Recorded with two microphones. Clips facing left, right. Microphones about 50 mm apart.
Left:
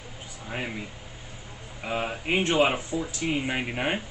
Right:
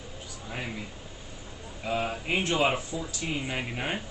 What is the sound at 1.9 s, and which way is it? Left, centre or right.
Speech, left.